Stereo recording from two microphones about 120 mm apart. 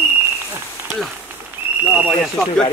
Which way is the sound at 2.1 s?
5° left (ahead or behind).